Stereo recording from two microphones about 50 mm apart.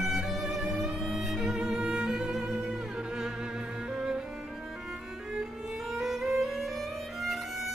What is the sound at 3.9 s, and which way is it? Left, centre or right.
Cello, centre.